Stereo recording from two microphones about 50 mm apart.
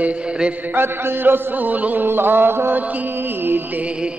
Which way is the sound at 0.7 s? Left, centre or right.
Right.